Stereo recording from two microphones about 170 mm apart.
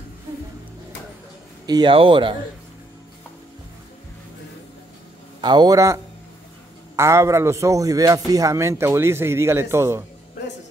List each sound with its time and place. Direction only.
1.7 s speech: 30° right (ahead or behind)
5.4 s speech: 25° right (ahead or behind)
7.0 s speech: 15° right (ahead or behind)